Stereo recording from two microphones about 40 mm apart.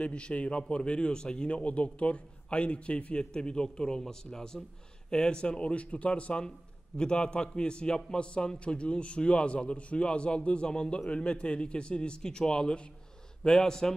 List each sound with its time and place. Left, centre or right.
0.0 s a man's voice: left; by 13.9 s centre